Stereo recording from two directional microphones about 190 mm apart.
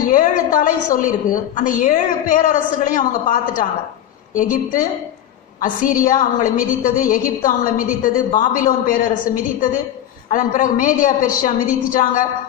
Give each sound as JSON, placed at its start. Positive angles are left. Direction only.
{"t": 0.0, "sound": "a woman's voice", "side_deg": 45}